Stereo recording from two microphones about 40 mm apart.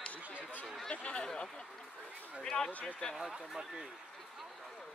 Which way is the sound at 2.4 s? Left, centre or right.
Centre.